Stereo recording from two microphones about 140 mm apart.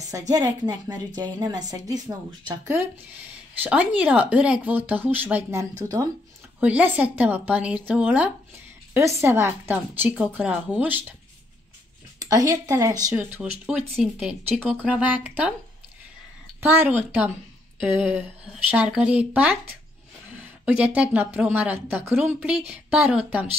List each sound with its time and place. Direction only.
0.3 s a woman's voice: 25° right (ahead or behind)
3.6 s speech: 10° right (ahead or behind)
12.2 s a woman's voice: 25° right (ahead or behind)
13.1 s speech: 10° right (ahead or behind)
16.6 s speech: 15° right (ahead or behind)